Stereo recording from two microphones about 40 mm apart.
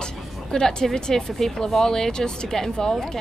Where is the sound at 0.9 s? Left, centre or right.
Centre.